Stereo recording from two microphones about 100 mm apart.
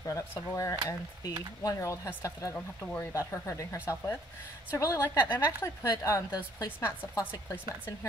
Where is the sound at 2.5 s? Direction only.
15° left (ahead or behind).